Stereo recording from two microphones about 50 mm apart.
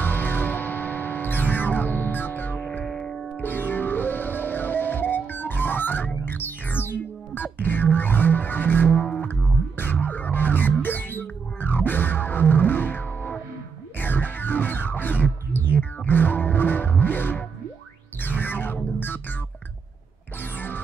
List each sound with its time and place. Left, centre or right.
0.0 s music: left
2.8 s music: centre
3.3 s music: left
20.5 s music: left